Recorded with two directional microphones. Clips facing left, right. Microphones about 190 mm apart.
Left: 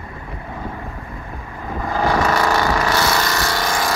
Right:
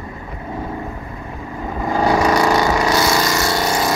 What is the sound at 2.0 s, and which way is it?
Vehicle, 20° right (ahead or behind).